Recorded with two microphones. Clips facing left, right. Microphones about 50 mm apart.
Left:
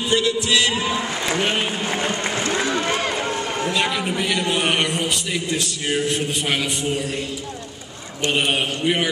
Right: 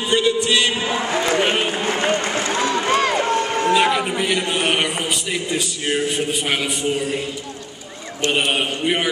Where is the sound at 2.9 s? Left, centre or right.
Right.